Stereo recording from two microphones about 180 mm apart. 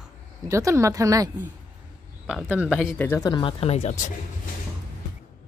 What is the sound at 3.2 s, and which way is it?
Speech, 25° left (ahead or behind).